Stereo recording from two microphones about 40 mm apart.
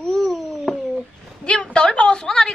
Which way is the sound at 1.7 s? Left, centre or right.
Left.